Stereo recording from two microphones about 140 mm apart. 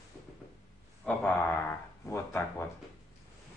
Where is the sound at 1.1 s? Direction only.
10° left (ahead or behind).